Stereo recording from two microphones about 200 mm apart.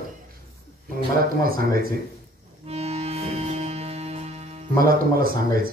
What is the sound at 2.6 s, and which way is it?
Music, 30° right (ahead or behind).